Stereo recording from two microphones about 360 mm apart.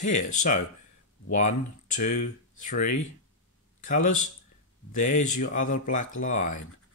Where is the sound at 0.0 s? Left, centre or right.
Centre.